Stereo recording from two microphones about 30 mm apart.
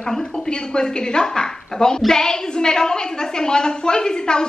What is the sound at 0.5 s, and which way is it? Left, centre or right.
A woman's voice, left.